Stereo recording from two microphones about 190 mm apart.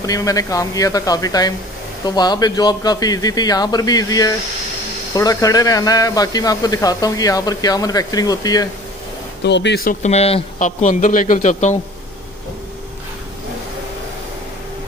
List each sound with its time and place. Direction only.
0.0 s a man's voice: 20° left (ahead or behind)
9.4 s speech: 65° left (ahead or behind)
9.8 s a man's voice: 35° left (ahead or behind)